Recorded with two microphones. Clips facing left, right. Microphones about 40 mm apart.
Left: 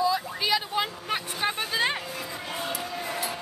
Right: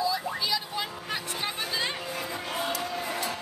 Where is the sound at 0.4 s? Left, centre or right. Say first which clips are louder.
Left 4 dB; left.